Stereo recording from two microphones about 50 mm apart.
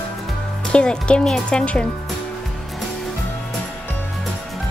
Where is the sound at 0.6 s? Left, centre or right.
Centre.